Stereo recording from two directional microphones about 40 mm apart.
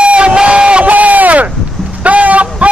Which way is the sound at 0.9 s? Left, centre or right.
Right.